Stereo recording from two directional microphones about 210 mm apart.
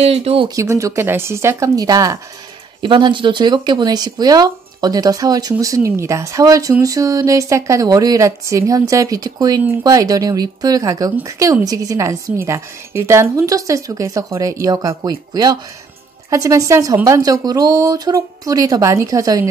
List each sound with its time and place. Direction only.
0.0 s speech: 30° right (ahead or behind)
0.6 s speech: 15° right (ahead or behind)